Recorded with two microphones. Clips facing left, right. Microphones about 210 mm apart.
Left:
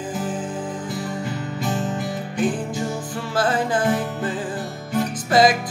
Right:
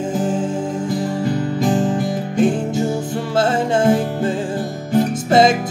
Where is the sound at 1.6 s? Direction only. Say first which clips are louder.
Right 7 dB; 35° right (ahead or behind).